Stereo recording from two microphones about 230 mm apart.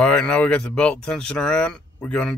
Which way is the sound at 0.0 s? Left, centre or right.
Centre.